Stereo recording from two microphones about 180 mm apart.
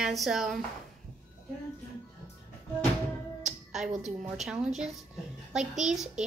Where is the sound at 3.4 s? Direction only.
Centre (ahead or behind).